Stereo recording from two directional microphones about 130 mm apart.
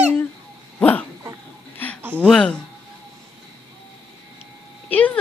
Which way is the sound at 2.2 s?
5° left (ahead or behind).